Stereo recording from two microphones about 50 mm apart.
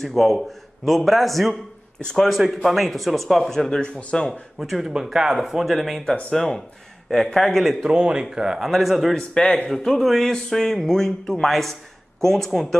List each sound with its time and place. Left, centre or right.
0.0 s speech: centre
2.3 s speech: centre
3.8 s speech: centre
4.3 s speech: centre
7.8 s speech: centre
9.3 s speech: centre